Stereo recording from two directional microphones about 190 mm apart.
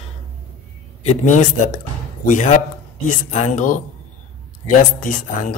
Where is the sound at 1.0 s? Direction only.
40° left (ahead or behind).